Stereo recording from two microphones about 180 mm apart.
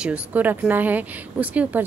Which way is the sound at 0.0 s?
10° right (ahead or behind).